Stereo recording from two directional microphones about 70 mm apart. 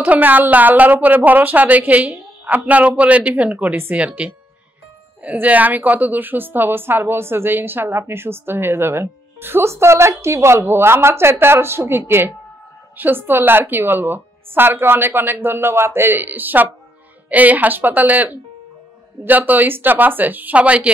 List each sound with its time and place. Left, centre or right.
0.0 s a woman's voice: right